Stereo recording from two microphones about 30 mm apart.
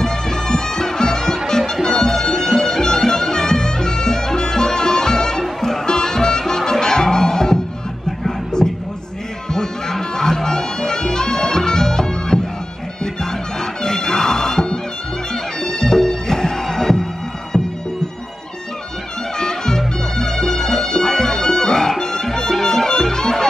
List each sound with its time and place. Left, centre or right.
0.0 s music: centre
5.4 s music: centre
5.9 s music: left
9.5 s music: centre
13.8 s music: left
19.3 s music: left